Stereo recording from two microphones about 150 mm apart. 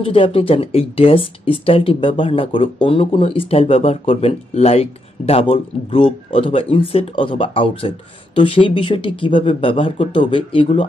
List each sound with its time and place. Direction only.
0.0 s speech: 35° left (ahead or behind)